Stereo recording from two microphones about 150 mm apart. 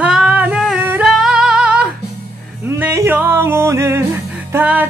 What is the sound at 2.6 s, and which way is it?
Music, 15° right (ahead or behind).